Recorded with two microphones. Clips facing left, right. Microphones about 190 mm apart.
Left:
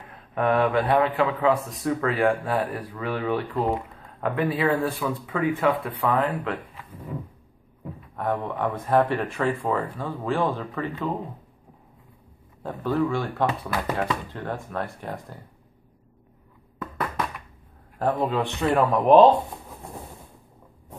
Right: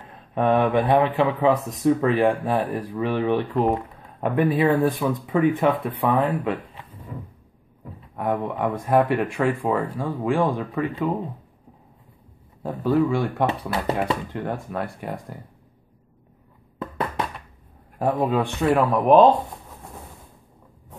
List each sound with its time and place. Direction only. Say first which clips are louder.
0.3 s speech: right 2 dB; 20° right (ahead or behind)
8.2 s speech: right 2 dB; 15° right (ahead or behind)
12.6 s speech: right 4 dB; 10° right (ahead or behind)
13.5 s speech: right 3 dB; 30° right (ahead or behind)
14.3 s speech: right 3 dB; 15° right (ahead or behind)
17.9 s speech: right 2 dB; 15° right (ahead or behind)